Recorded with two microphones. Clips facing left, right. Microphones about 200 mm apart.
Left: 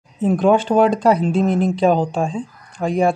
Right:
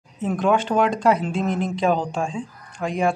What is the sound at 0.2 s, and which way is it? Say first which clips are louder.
Speech: left 5 dB; 30° left (ahead or behind).